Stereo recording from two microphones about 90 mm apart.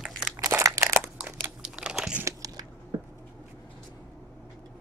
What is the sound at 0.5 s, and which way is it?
Crushing, 30° right (ahead or behind).